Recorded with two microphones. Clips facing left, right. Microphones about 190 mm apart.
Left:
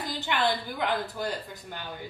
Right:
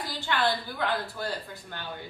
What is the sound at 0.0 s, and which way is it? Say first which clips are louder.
Speech: even; 20° left (ahead or behind).